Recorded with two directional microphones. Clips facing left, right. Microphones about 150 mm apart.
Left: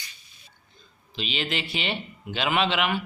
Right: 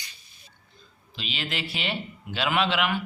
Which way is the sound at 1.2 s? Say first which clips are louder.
Left 3 dB; centre (ahead or behind).